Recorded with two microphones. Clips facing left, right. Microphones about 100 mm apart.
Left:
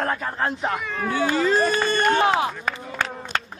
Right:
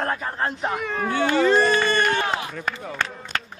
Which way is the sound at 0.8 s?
40° right (ahead or behind).